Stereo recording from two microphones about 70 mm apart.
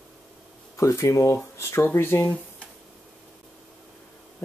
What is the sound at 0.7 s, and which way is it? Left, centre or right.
Speech, left.